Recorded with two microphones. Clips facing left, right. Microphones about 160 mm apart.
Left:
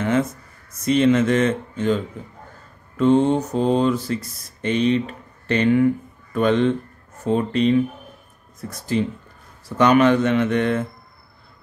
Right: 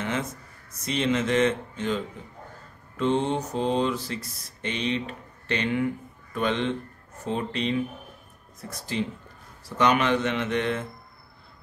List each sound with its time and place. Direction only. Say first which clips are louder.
0.8 s speech: left 9 dB; 50° left (ahead or behind)
3.0 s speech: left 8 dB; 50° left (ahead or behind)